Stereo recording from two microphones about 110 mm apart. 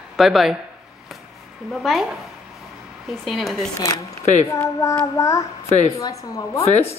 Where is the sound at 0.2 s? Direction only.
Centre (ahead or behind).